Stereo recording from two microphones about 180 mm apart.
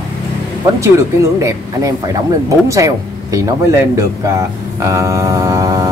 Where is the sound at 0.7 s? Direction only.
15° right (ahead or behind).